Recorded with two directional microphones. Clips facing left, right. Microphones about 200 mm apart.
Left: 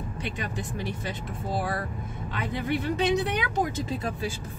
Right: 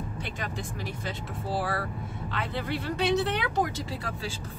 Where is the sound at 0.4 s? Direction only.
20° left (ahead or behind).